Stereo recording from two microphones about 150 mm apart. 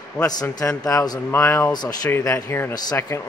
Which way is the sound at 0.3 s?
25° left (ahead or behind).